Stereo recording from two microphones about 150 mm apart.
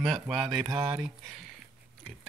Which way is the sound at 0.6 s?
25° right (ahead or behind).